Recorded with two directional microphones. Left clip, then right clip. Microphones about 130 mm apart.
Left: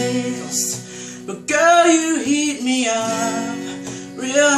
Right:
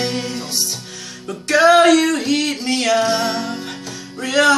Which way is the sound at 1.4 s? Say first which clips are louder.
Right 2 dB; 20° left (ahead or behind).